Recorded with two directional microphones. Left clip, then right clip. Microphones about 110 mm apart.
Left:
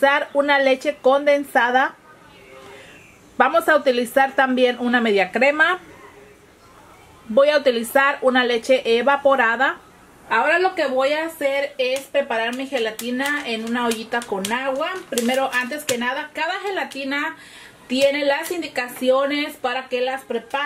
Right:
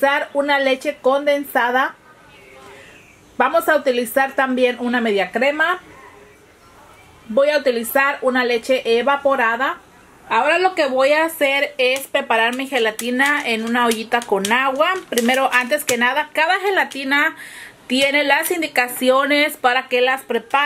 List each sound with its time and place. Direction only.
0.0 s speech: centre (ahead or behind)
3.3 s speech: centre (ahead or behind)
7.3 s speech: centre (ahead or behind)
10.2 s speech: 35° right (ahead or behind)